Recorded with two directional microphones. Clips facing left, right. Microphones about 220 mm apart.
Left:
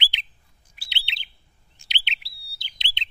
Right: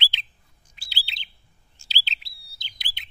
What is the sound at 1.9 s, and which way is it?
Bird, 35° right (ahead or behind).